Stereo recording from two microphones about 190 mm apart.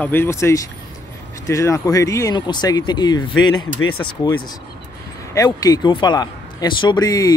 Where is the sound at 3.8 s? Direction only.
90° left.